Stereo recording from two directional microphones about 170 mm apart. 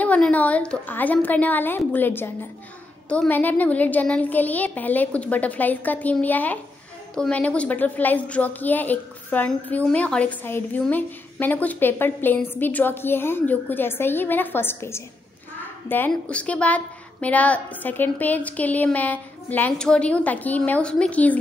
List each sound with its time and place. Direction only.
0.0 s a woman's voice: 10° left (ahead or behind)